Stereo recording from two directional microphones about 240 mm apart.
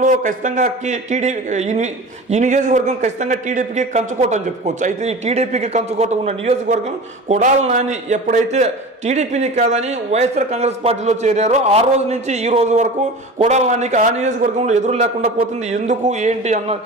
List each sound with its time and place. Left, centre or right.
0.0 s a man's voice: right